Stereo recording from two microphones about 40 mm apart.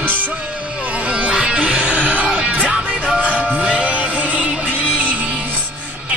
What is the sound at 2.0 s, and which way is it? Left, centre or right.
Music, right.